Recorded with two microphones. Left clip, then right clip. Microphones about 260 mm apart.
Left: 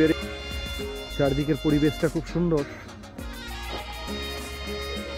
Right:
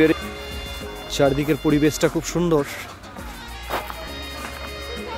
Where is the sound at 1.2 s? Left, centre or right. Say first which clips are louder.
Right 5 dB; centre.